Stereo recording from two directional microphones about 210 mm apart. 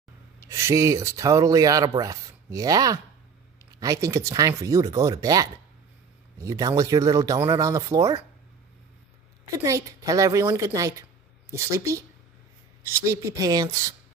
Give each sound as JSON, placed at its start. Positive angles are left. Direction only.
{"t": 0.5, "sound": "speech", "side_deg": -15}
{"t": 9.7, "sound": "speech", "side_deg": -15}